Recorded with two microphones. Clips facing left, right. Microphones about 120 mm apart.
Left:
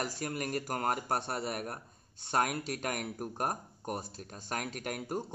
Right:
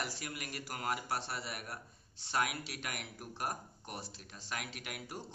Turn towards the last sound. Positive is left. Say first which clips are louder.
# left 9 dB
turn(degrees=45)  # may be behind; listen again after turning